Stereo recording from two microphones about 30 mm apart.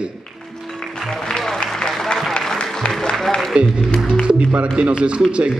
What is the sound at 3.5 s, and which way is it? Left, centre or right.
Speech, right.